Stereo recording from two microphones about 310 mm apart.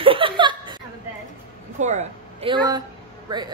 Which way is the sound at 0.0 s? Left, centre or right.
Centre.